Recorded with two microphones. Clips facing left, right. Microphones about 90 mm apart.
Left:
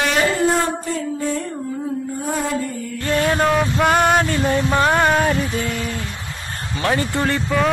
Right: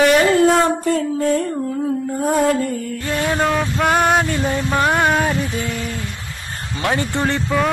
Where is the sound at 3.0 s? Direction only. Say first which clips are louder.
Left 3 dB; 15° right (ahead or behind).